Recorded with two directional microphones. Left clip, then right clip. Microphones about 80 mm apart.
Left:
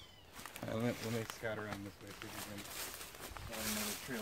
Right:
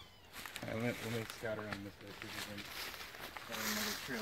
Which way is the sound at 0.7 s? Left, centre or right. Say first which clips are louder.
Left 1 dB; left.